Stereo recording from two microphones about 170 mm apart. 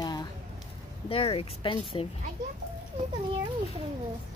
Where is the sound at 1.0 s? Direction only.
35° left (ahead or behind).